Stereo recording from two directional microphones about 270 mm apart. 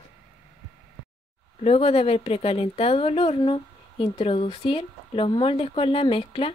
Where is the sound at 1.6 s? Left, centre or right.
Left.